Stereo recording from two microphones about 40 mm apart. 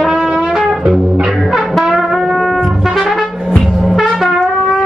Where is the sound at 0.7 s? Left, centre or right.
Right.